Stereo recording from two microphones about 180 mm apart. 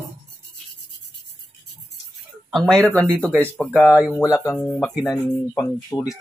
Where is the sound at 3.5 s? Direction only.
10° left (ahead or behind).